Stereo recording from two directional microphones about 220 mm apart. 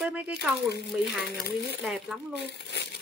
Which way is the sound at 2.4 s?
50° left (ahead or behind).